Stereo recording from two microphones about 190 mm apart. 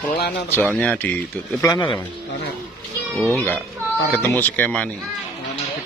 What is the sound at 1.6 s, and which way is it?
Speech, 20° left (ahead or behind).